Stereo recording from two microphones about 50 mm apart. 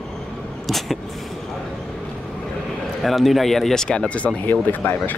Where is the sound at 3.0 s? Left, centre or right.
Centre; by 4.4 s left.